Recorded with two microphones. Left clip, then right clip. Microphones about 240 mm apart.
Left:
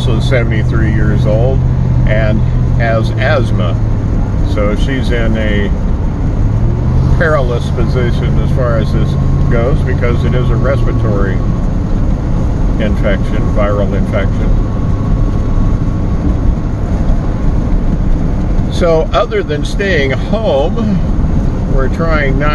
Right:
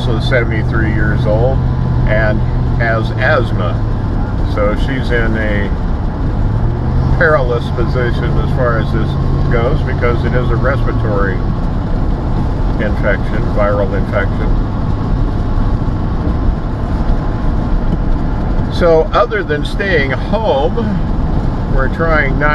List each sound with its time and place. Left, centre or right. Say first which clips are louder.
2.0 s speech: right 1 dB; left
4.6 s speech: even; left
7.2 s speech: right 2 dB; left
9.5 s speech: left 1 dB; left
12.8 s speech: even; left
18.8 s speech: right 1 dB; left
22.0 s speech: right 2 dB; left